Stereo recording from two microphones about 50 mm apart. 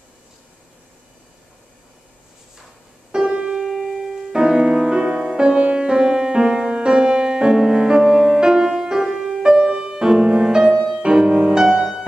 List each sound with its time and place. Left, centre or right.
3.1 s music: centre